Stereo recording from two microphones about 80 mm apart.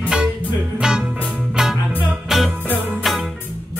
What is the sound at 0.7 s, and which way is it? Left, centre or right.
Music, centre.